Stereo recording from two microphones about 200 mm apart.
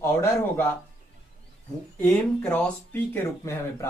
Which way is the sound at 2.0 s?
5° left (ahead or behind).